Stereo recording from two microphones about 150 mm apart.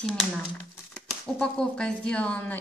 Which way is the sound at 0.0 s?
5° left (ahead or behind).